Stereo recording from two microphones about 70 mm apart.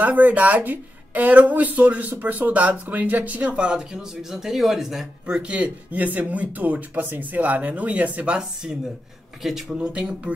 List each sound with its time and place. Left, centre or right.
0.0 s speech: right; by 5.0 s centre
5.2 s speech: centre